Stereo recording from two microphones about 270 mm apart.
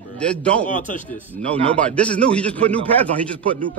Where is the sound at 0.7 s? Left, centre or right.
Left.